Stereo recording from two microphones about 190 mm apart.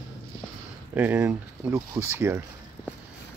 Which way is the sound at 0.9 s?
10° right (ahead or behind).